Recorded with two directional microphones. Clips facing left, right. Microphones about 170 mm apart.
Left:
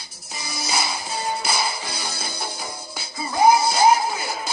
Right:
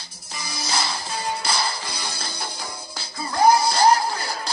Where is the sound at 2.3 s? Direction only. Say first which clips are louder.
Left 2 dB; 25° left (ahead or behind).